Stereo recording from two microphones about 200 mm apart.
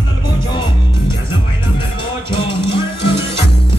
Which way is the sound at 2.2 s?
25° left (ahead or behind).